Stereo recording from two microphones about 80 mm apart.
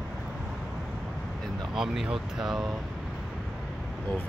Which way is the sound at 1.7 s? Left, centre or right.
Centre.